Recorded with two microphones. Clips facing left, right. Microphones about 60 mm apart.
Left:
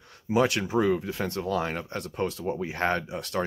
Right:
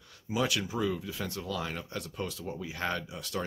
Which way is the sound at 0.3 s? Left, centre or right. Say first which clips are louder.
Left 7 dB; left.